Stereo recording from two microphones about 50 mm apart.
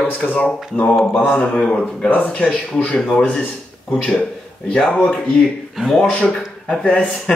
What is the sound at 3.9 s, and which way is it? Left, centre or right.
Speech, centre.